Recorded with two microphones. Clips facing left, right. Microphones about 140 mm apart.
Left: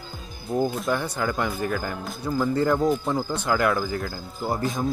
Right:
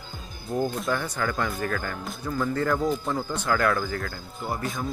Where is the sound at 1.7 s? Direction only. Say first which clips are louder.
Left 2 dB; 5° left (ahead or behind).